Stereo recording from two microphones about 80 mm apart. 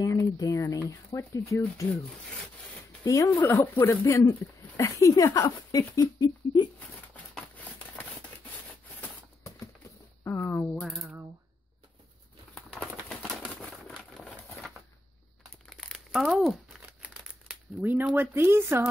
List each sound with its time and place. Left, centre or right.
0.0 s speech: left
3.0 s speech: left
3.4 s speech: left
4.4 s speech: left
10.2 s speech: left
10.8 s typing: centre
12.5 s bird: centre
13.6 s a sound: centre
15.7 s crumpling: centre
17.0 s crumpling: centre
18.1 s speech: right